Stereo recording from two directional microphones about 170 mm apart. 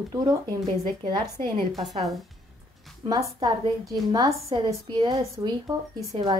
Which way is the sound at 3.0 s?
20° right (ahead or behind).